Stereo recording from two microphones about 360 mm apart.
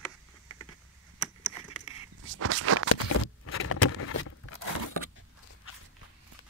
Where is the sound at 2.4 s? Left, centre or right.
Right.